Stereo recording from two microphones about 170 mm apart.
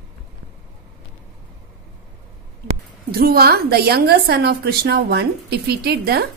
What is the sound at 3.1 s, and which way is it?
A woman's voice, 65° right (ahead or behind).